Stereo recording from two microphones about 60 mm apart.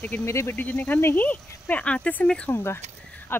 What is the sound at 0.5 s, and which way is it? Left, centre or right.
Speech, left.